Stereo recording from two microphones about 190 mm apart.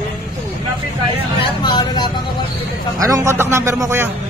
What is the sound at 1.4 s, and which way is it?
Speech, 25° left (ahead or behind).